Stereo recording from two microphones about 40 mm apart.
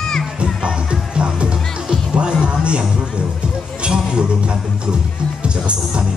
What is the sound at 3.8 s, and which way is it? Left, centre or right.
Music, right.